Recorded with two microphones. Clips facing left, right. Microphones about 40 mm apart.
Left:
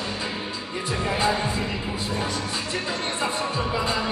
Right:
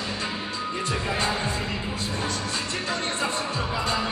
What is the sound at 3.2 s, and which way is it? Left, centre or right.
Music, centre.